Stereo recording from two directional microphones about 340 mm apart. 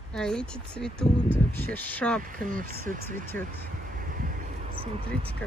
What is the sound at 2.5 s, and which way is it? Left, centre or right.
Speech, right.